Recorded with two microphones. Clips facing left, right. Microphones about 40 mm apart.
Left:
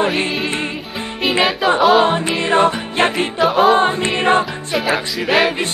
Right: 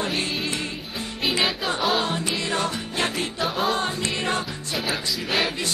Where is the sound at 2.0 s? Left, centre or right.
Left.